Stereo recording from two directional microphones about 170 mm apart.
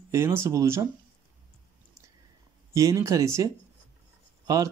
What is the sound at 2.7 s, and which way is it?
Speech, 20° right (ahead or behind).